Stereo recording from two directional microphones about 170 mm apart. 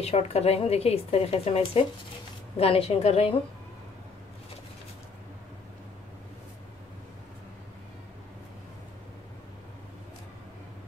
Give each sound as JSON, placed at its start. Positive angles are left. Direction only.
{"t": 0.0, "sound": "speech", "side_deg": 35}